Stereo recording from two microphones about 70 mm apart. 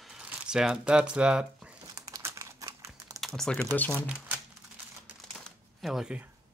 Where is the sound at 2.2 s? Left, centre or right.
Right.